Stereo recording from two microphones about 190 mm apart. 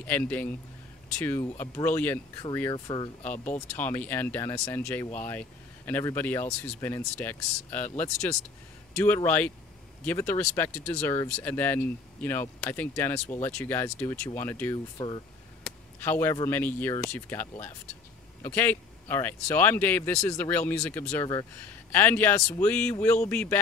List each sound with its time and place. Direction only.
0.0 s speech: 10° left (ahead or behind); by 3.3 s 25° left (ahead or behind)
3.5 s speech: 10° left (ahead or behind)
15.0 s speech: 25° left (ahead or behind)
16.0 s speech: 10° left (ahead or behind)